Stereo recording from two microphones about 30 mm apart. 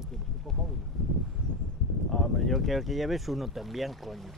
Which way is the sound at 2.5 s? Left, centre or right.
Centre.